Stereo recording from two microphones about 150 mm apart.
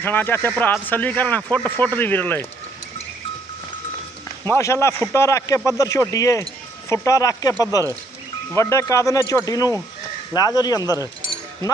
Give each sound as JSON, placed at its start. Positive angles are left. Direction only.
{"t": 0.0, "sound": "speech", "side_deg": 15}
{"t": 4.5, "sound": "speech", "side_deg": 20}